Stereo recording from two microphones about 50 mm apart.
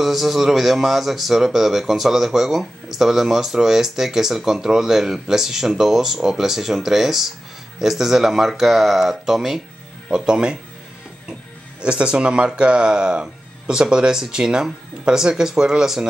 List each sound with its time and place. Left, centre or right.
0.0 s speech: centre
11.8 s speech: right